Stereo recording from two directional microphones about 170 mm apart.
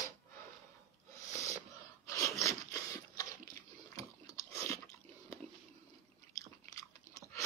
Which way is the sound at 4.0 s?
20° left (ahead or behind).